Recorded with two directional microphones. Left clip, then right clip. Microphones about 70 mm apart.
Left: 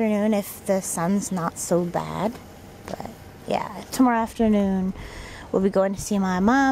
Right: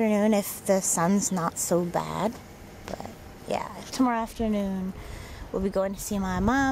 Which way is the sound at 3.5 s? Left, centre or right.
Centre.